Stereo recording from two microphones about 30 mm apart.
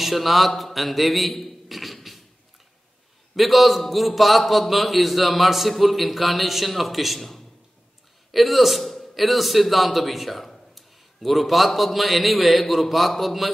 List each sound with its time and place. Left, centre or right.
0.0 s a man's voice: centre
3.3 s a man's voice: centre